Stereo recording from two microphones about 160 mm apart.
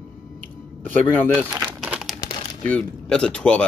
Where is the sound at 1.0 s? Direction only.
10° left (ahead or behind).